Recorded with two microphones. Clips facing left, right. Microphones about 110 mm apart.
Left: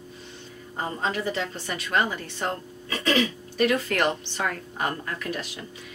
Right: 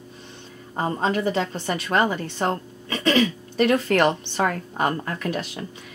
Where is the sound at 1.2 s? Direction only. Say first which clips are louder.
Right 5 dB; 30° right (ahead or behind).